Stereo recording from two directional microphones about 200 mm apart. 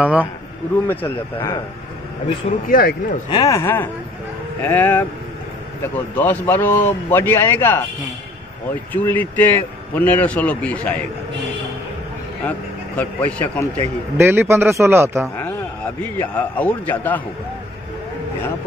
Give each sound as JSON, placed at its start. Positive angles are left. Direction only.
{"t": 0.0, "sound": "a man's voice", "side_deg": -5}
{"t": 0.8, "sound": "a man's voice", "side_deg": 15}
{"t": 2.7, "sound": "a man's voice", "side_deg": 45}
{"t": 3.3, "sound": "a man's voice", "side_deg": 20}
{"t": 8.9, "sound": "a man's voice", "side_deg": 10}
{"t": 12.4, "sound": "a man's voice", "side_deg": 10}
{"t": 14.1, "sound": "a man's voice", "side_deg": -10}
{"t": 16.0, "sound": "a man's voice", "side_deg": 10}